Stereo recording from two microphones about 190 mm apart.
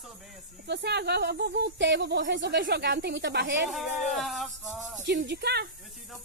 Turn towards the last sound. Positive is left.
turn(degrees=-60)  # may be behind; listen again after turning